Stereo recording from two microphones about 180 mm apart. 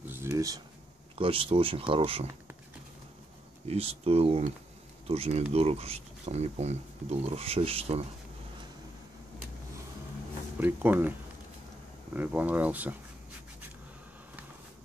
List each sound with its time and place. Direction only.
0.0 s a sound: 10° right (ahead or behind)
1.1 s speech: 30° right (ahead or behind)
3.6 s speech: 35° right (ahead or behind)
10.6 s speech: 10° right (ahead or behind)
12.2 s speech: 10° right (ahead or behind)